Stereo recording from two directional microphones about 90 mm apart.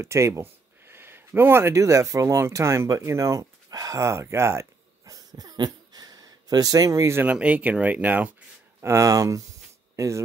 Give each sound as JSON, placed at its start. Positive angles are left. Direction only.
{"t": 0.0, "sound": "speech", "side_deg": -30}
{"t": 7.2, "sound": "speech", "side_deg": -15}
{"t": 8.8, "sound": "speech", "side_deg": -35}